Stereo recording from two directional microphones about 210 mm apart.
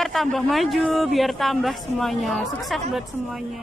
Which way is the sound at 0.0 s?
Centre (ahead or behind).